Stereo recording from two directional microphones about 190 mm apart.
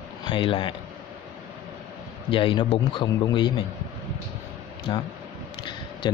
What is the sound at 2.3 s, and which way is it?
Speech, 25° left (ahead or behind).